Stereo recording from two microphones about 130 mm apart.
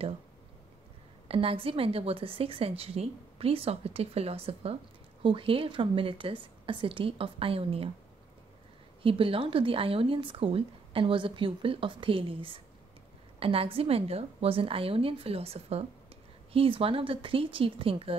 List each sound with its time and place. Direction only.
1.3 s speech: 45° right (ahead or behind)
9.0 s speech: 45° right (ahead or behind)